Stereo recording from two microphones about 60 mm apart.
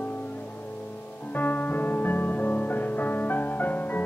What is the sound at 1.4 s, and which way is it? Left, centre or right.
Music, left.